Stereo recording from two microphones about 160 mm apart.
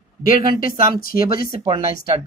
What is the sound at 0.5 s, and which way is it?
Speech, 60° left (ahead or behind).